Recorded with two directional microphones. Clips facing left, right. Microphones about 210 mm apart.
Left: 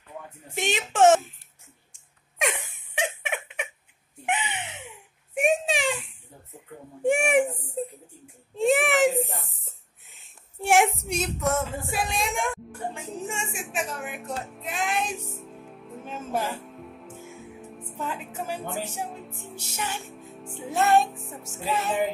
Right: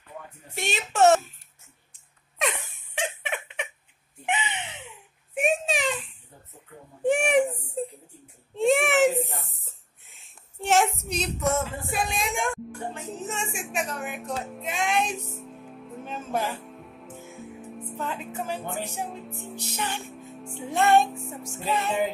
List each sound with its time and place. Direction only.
0.6 s speech: 15° left (ahead or behind)
2.9 s a sound: 10° left (ahead or behind)
11.3 s music: centre (ahead or behind)
12.9 s music: 10° left (ahead or behind)
13.3 s speech: 5° left (ahead or behind)
19.7 s speech: 10° left (ahead or behind)